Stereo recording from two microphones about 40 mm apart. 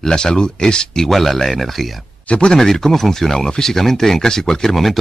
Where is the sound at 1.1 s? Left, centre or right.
Centre.